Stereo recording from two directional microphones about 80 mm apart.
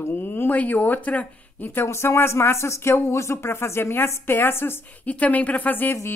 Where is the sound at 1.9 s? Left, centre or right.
Left.